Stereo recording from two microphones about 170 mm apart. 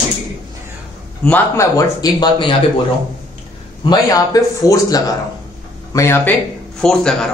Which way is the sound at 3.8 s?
20° left (ahead or behind).